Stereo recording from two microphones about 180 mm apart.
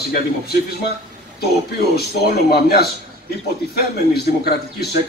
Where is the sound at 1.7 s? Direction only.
60° left (ahead or behind).